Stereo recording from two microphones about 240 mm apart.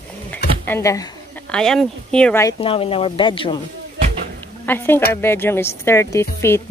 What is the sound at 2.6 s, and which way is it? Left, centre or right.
Speech, left.